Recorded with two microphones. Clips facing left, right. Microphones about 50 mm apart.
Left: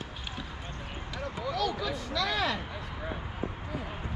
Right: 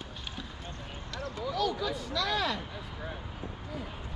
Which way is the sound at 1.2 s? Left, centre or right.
Centre.